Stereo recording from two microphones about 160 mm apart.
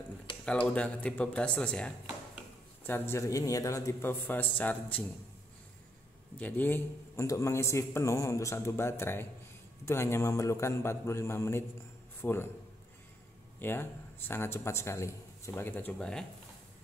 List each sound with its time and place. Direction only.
0.5 s a man's voice: 10° left (ahead or behind)
6.3 s a man's voice: 10° left (ahead or behind)
13.6 s a man's voice: 15° left (ahead or behind)